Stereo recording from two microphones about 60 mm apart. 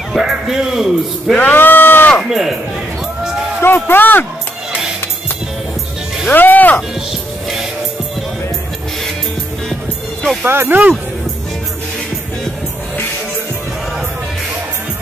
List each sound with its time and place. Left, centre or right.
0.1 s a man's voice: centre
1.4 s a sound: left
2.2 s speech: centre
3.6 s speech: left
6.3 s music: left
10.4 s speech: right